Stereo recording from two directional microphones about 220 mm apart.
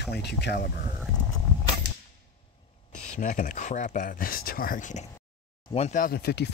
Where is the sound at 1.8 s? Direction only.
50° right (ahead or behind).